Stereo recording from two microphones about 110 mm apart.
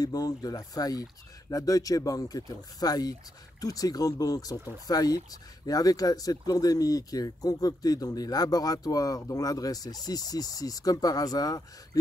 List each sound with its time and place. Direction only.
0.0 s speech: 35° left (ahead or behind)